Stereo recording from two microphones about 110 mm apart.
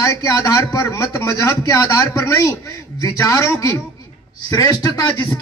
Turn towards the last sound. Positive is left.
turn(degrees=35)  # may be behind; listen again after turning